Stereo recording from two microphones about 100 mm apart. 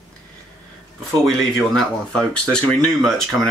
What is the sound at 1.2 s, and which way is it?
Speech, centre (ahead or behind).